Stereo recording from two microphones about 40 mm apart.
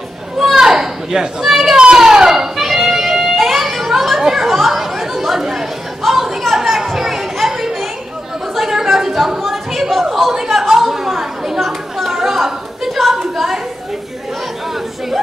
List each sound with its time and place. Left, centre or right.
0.6 s children playing: centre
1.8 s music: centre
3.3 s children playing: centre
4.2 s chatter: centre
8.5 s a sound: centre
10.7 s chatter: centre
12.3 s a sound: centre